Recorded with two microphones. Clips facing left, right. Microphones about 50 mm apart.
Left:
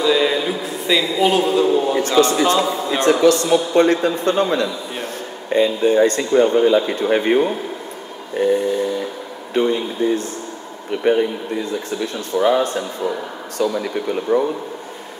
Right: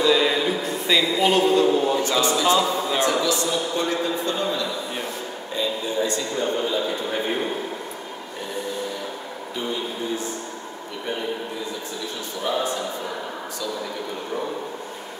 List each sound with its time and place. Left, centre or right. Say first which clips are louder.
0.0 s a sound: left 2 dB; centre
2.0 s a man's voice: left 6 dB; left
8.4 s speech: left 13 dB; left